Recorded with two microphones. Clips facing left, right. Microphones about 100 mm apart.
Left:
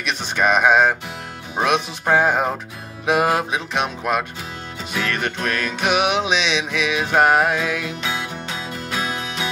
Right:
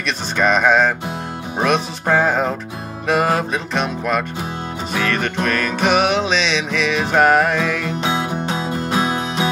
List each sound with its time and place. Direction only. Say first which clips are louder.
0.0 s music: right 2 dB; 10° left (ahead or behind)
5.2 s music: right 3 dB; 5° left (ahead or behind)
8.0 s music: right 6 dB; 30° right (ahead or behind)